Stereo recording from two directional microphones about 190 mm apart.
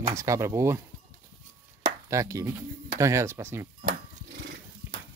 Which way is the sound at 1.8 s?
15° right (ahead or behind).